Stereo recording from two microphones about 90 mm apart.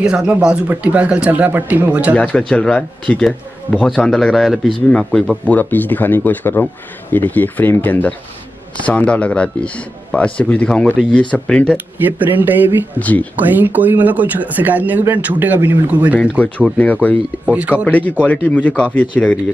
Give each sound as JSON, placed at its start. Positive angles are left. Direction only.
{"t": 0.0, "sound": "speech", "side_deg": -10}
{"t": 2.1, "sound": "a man's voice", "side_deg": 10}
{"t": 5.4, "sound": "speech", "side_deg": 15}
{"t": 11.7, "sound": "speech", "side_deg": -20}
{"t": 13.0, "sound": "speech", "side_deg": 15}
{"t": 13.4, "sound": "speech", "side_deg": -20}
{"t": 16.3, "sound": "speech", "side_deg": 15}
{"t": 17.5, "sound": "speech", "side_deg": -15}
{"t": 18.2, "sound": "speech", "side_deg": 15}